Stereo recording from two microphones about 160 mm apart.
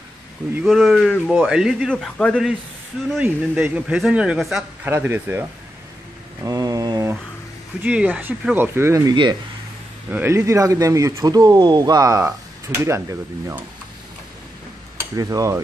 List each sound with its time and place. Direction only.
0.6 s speech: centre (ahead or behind)
3.1 s speech: 5° right (ahead or behind)
4.8 s speech: 15° right (ahead or behind)
6.4 s mantra: 20° right (ahead or behind)
7.8 s speech: 5° right (ahead or behind); by 9.4 s 30° right (ahead or behind)
10.0 s speech: 15° right (ahead or behind)
15.1 s speech: 20° right (ahead or behind)